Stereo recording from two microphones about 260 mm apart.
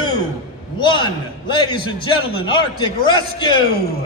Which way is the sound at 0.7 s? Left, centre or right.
Centre.